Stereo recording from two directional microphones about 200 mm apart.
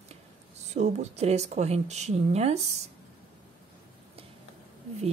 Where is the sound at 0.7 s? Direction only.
35° right (ahead or behind).